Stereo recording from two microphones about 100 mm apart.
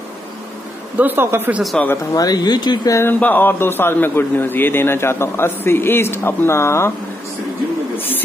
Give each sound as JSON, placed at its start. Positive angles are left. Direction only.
{"t": 0.9, "sound": "speech", "side_deg": -20}
{"t": 1.7, "sound": "speech", "side_deg": 5}
{"t": 2.1, "sound": "speech", "side_deg": 40}
{"t": 2.9, "sound": "a man's voice", "side_deg": 25}